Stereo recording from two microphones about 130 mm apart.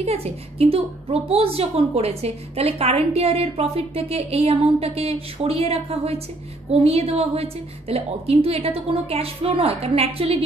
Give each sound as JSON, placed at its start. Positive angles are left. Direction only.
{"t": 0.0, "sound": "a woman's voice", "side_deg": -50}